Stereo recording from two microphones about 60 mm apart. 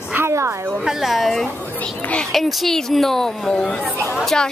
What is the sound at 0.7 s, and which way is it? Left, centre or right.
A woman's voice, centre.